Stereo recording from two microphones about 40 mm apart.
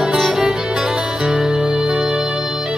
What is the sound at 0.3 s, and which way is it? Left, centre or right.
Music, centre.